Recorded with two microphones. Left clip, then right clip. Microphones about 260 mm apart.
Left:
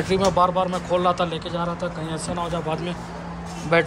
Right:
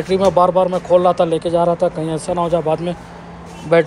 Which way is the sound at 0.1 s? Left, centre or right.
Centre.